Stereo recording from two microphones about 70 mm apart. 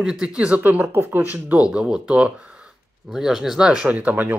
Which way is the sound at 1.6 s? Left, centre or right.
Centre.